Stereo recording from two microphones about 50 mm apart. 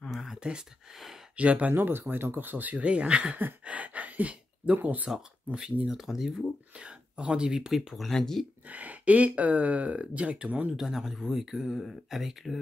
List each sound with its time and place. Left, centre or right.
0.4 s speech: centre
0.9 s speech: centre
1.3 s speech: right
1.7 s speech: right
3.6 s a sound: right
4.7 s speech: right
5.5 s speech: centre
6.8 s speech: right; by 8.5 s centre
8.6 s speech: right
10.8 s speech: centre